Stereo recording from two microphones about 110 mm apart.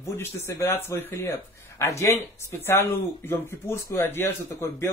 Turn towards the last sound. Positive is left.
turn(degrees=25)  # may be behind; listen again after turning